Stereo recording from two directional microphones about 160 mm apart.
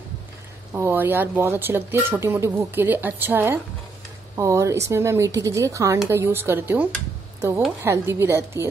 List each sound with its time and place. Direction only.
0.7 s a woman's voice: 10° right (ahead or behind)